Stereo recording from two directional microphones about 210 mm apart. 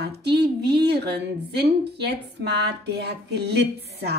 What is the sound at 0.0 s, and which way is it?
Speech, 50° right (ahead or behind).